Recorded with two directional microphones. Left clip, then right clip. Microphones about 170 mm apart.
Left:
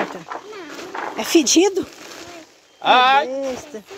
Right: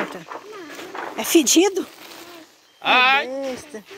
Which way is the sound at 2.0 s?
65° left (ahead or behind).